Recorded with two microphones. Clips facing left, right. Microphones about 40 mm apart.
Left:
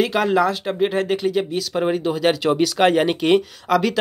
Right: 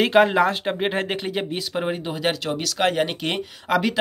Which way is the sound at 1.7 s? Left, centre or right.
Centre.